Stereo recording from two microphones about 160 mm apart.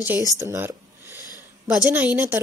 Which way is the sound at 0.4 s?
15° right (ahead or behind).